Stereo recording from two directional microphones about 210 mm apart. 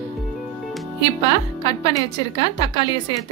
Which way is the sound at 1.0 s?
20° left (ahead or behind).